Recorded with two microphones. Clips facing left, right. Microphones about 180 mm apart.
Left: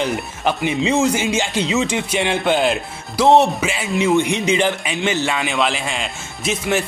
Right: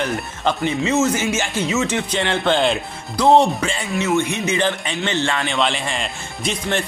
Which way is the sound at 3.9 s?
15° left (ahead or behind).